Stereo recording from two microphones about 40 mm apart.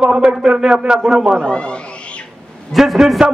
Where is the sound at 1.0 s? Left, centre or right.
Centre.